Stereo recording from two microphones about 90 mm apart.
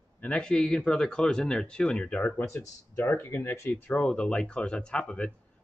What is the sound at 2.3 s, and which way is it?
Speech, 30° left (ahead or behind).